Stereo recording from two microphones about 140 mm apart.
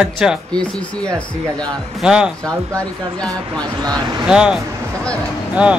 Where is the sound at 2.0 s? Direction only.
5° right (ahead or behind).